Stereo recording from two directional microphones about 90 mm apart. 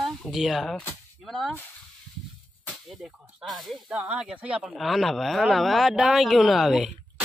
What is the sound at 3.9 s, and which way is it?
Speech, 10° right (ahead or behind).